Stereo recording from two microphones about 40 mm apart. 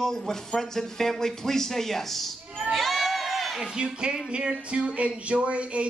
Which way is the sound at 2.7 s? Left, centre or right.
Centre.